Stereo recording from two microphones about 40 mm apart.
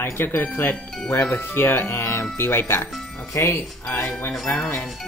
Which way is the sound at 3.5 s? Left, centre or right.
Left.